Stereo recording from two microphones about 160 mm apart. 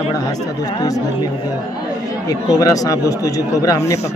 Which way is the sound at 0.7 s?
20° left (ahead or behind).